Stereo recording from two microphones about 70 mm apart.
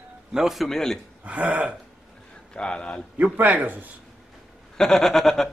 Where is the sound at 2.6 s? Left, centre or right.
Centre.